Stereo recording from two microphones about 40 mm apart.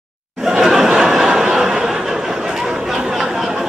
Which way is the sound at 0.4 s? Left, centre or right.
Centre.